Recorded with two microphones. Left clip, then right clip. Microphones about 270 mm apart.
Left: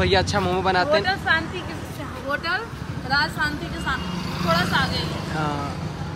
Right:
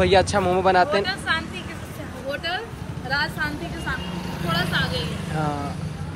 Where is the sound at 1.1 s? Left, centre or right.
Left.